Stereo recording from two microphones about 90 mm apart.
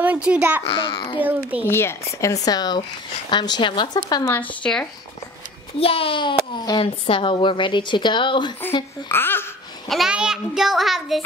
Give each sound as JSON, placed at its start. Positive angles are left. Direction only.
{"t": 0.0, "sound": "a child's voice", "side_deg": -15}
{"t": 0.7, "sound": "a child's voice", "side_deg": 75}
{"t": 1.2, "sound": "a child's voice", "side_deg": -20}
{"t": 1.6, "sound": "speech", "side_deg": 25}
{"t": 4.6, "sound": "speech", "side_deg": 10}
{"t": 5.8, "sound": "a woman's voice", "side_deg": 90}
{"t": 6.8, "sound": "a woman's voice", "side_deg": 80}
{"t": 9.1, "sound": "speech", "side_deg": 25}
{"t": 9.8, "sound": "a child's voice", "side_deg": 0}